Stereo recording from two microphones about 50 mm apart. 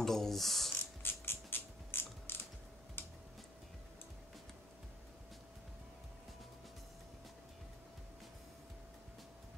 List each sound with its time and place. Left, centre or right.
0.0 s mechanisms: centre
1.0 s creak: left
3.0 s tick-tock: left